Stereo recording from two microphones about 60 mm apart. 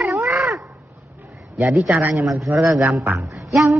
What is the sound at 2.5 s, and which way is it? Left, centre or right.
Speech, right.